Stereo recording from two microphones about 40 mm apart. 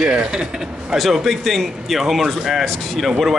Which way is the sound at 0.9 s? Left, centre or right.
Centre.